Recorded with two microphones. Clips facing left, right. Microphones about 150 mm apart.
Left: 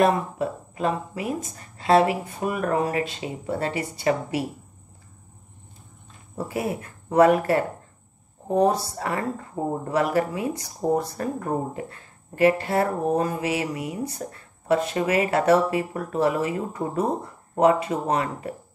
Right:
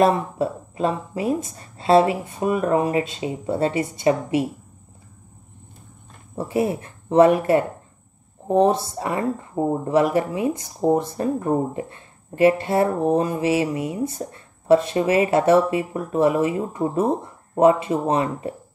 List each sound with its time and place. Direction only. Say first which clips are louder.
0.0 s speech: right 2 dB; 30° right (ahead or behind)
6.3 s speech: right 5 dB; 25° right (ahead or behind)